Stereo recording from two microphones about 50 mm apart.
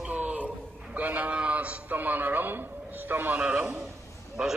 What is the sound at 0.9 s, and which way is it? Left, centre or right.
A man's voice, right.